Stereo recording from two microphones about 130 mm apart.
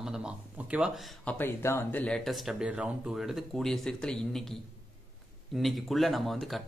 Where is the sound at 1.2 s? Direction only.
15° left (ahead or behind).